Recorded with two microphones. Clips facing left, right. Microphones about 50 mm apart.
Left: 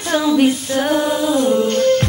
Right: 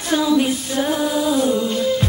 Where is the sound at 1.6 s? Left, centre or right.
Left.